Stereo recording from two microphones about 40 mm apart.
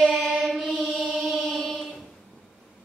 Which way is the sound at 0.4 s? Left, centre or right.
Centre.